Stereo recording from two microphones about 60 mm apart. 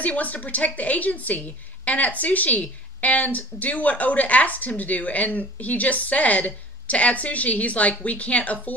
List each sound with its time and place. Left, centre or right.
0.0 s a woman's voice: left